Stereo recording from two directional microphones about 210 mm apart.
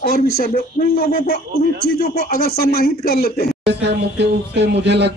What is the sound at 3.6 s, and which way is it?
Speech, 55° right (ahead or behind).